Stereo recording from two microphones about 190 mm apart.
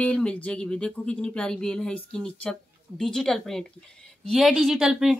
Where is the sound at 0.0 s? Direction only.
5° left (ahead or behind).